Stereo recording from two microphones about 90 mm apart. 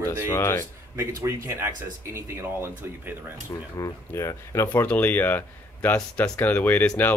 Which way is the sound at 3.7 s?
35° left (ahead or behind).